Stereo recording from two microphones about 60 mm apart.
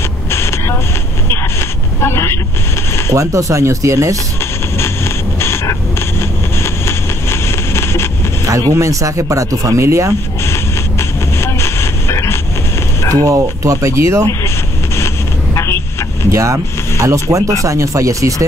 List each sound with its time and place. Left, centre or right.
0.3 s vehicle: left
2.0 s vehicle: left
3.1 s speech: right
4.7 s a sound: left
8.5 s speech: right
10.4 s train: left
13.1 s speech: right
15.5 s vehicle: left
16.3 s speech: right